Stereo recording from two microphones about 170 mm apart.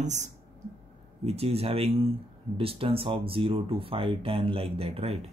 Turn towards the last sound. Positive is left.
turn(degrees=-35)  # may be behind; listen again after turning